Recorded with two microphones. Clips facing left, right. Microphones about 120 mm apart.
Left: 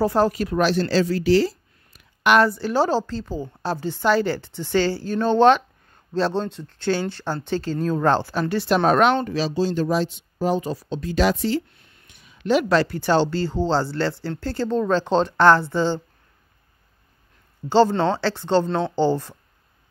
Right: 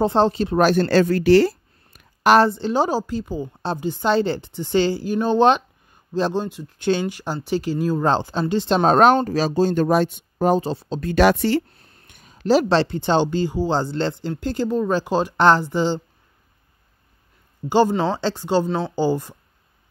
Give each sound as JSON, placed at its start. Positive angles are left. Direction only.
{"t": 0.0, "sound": "speech", "side_deg": -25}
{"t": 0.6, "sound": "speech", "side_deg": -50}
{"t": 2.2, "sound": "a woman's voice", "side_deg": -35}
{"t": 2.5, "sound": "a woman's voice", "side_deg": -20}
{"t": 10.6, "sound": "speech", "side_deg": -30}
{"t": 11.0, "sound": "speech", "side_deg": -60}
{"t": 11.7, "sound": "speech", "side_deg": -35}
{"t": 17.6, "sound": "a woman's voice", "side_deg": -15}